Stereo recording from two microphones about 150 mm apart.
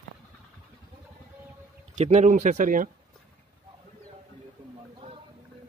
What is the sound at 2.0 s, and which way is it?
Speech, 50° right (ahead or behind).